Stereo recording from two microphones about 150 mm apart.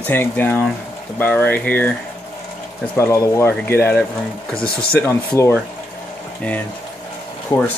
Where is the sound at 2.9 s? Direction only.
20° left (ahead or behind).